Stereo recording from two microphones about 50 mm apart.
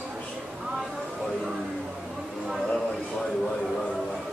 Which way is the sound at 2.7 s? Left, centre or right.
Centre.